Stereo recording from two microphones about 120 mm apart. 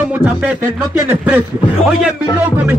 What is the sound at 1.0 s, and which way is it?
A man's voice, 10° right (ahead or behind).